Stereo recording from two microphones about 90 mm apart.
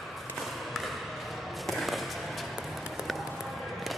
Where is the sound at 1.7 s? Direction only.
Centre (ahead or behind).